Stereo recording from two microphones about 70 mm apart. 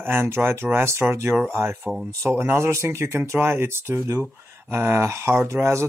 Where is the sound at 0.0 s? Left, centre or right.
Right.